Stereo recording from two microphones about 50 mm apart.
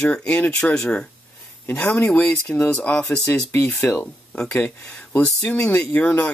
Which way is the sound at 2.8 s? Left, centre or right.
Left.